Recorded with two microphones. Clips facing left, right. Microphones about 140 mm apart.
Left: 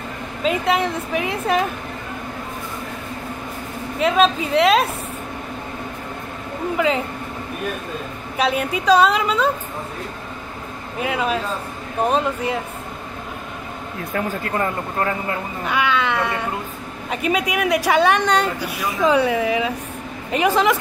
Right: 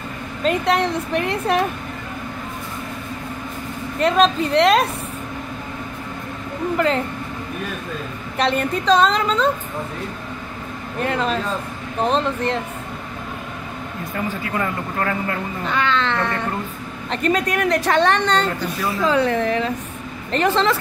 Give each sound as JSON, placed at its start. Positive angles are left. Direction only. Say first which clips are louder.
{"t": 0.4, "sound": "speech", "louder": "right 1 dB", "side_deg": 5}
{"t": 4.0, "sound": "speech", "louder": "right 1 dB", "side_deg": 5}
{"t": 8.4, "sound": "speech", "louder": "right 1 dB", "side_deg": 5}
{"t": 11.0, "sound": "speech", "louder": "even", "side_deg": 5}
{"t": 14.5, "sound": "speech", "louder": "left 1 dB", "side_deg": 25}
{"t": 15.6, "sound": "speech", "louder": "left 1 dB", "side_deg": 10}